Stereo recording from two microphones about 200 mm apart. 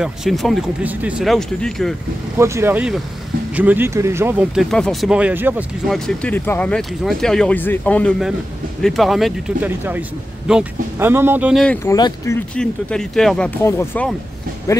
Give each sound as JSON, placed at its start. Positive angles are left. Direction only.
{"t": 0.0, "sound": "speech", "side_deg": 0}
{"t": 2.3, "sound": "speech", "side_deg": -15}
{"t": 11.6, "sound": "speech", "side_deg": 5}
{"t": 11.9, "sound": "speech", "side_deg": 15}
{"t": 12.5, "sound": "speech", "side_deg": 5}